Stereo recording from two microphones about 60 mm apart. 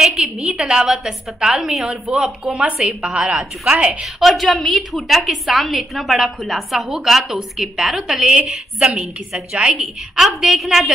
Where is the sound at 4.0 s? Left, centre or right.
Centre.